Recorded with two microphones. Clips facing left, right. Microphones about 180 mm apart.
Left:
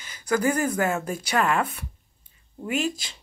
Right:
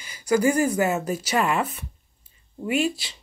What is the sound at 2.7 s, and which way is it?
Speech, 45° left (ahead or behind).